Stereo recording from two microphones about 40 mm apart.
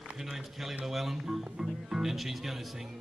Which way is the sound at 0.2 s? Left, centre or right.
Centre.